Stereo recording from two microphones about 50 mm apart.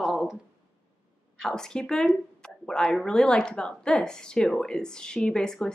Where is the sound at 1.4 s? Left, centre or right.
Centre.